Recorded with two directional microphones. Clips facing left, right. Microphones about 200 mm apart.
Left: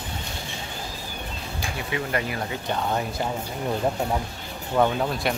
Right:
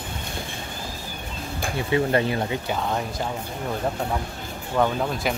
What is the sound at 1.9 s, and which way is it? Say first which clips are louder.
Speech: right 7 dB; 30° right (ahead or behind).